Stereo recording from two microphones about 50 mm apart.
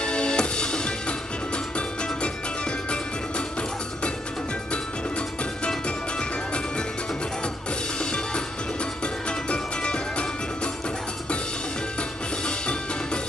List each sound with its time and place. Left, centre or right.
0.0 s music: centre
9.0 s music: centre
12.4 s music: centre